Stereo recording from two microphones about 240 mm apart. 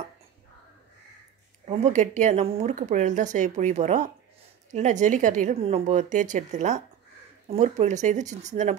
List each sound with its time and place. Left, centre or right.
1.7 s speech: right